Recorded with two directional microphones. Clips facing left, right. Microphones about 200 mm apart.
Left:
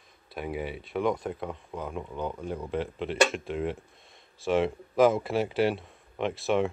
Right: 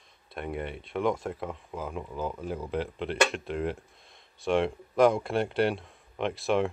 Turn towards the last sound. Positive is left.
turn(degrees=0)  # may be behind; listen again after turning